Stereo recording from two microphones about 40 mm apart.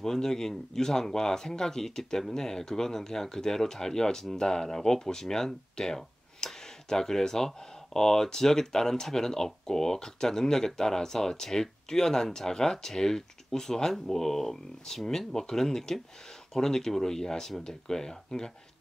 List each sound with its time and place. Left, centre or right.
0.0 s speech: centre